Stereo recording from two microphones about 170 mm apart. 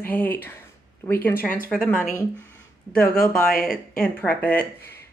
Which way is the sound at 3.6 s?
5° left (ahead or behind).